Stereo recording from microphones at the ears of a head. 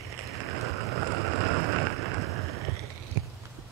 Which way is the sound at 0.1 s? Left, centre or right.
Right.